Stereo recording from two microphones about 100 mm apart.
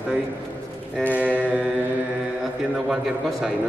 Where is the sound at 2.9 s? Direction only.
5° right (ahead or behind).